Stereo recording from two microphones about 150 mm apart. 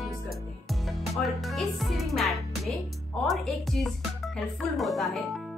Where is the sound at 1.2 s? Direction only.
Centre (ahead or behind).